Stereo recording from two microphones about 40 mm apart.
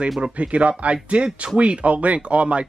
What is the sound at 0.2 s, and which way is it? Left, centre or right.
Speech, right.